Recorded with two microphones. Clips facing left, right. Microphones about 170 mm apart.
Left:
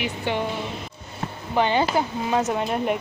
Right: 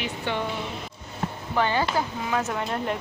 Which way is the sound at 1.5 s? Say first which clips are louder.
Left 4 dB; 20° left (ahead or behind).